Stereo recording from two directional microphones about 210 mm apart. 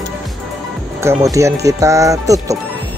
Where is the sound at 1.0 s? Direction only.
15° right (ahead or behind).